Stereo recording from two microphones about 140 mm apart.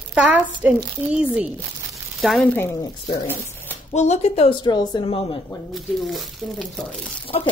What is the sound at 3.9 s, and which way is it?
Speech, 55° left (ahead or behind).